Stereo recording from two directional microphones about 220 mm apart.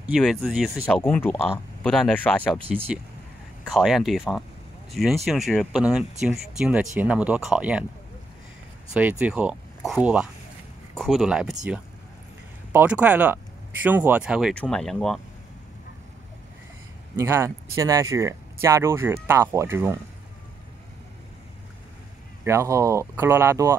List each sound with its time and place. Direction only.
0.0 s speech: centre (ahead or behind)
3.6 s speech: centre (ahead or behind)
9.2 s speech: 5° right (ahead or behind)
17.2 s speech: 10° right (ahead or behind)
22.4 s speech: 10° right (ahead or behind)